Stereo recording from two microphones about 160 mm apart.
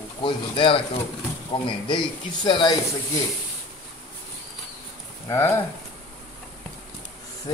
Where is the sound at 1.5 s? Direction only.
30° left (ahead or behind).